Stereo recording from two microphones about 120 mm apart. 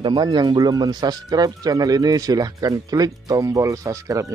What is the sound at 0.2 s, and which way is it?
Speech, 35° right (ahead or behind).